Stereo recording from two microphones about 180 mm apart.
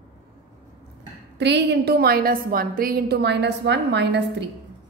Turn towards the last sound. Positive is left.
turn(degrees=-70)  # may be behind; listen again after turning